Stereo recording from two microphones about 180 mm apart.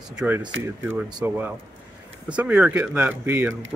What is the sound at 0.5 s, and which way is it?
Speech, 90° right.